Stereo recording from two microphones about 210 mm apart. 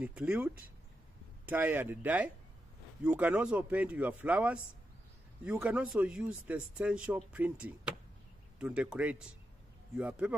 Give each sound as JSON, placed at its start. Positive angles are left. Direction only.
{"t": 0.0, "sound": "speech", "side_deg": -5}